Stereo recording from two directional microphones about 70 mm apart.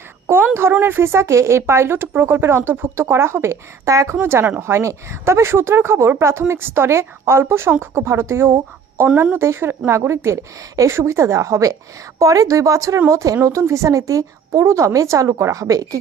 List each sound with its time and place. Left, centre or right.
0.6 s speech: right
4.2 s a woman's voice: right